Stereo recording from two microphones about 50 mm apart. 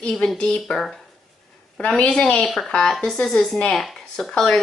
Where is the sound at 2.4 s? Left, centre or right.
Centre.